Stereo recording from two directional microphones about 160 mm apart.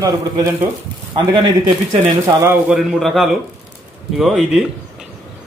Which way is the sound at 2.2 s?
15° right (ahead or behind).